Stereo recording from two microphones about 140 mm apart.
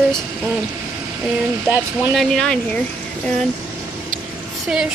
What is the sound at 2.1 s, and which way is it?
Speech, 5° left (ahead or behind).